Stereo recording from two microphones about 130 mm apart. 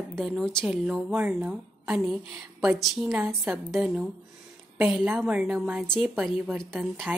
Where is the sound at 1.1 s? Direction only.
10° right (ahead or behind).